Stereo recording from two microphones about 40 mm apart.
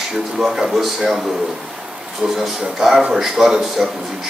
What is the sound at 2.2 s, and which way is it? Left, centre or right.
A man's voice, centre.